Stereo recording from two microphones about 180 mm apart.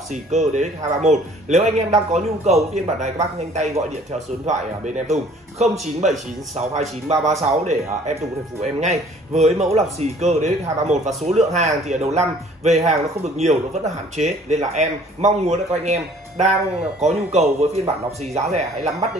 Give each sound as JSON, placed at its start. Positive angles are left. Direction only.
{"t": 0.1, "sound": "a man's voice", "side_deg": -40}